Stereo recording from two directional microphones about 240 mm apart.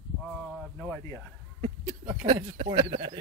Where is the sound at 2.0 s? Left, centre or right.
Right.